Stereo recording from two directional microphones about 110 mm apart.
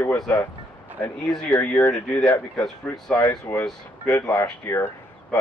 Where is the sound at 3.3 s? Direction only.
20° left (ahead or behind).